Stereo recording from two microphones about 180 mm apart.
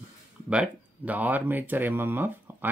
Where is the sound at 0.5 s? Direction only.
5° right (ahead or behind).